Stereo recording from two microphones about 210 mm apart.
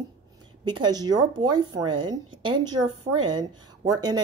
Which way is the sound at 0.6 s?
20° right (ahead or behind).